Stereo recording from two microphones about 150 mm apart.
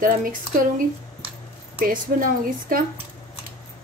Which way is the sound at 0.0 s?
70° right (ahead or behind).